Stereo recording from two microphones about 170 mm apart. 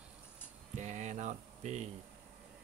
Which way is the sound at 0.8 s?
45° right (ahead or behind).